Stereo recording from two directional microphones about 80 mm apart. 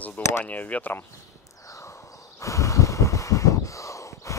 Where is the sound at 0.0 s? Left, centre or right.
Left.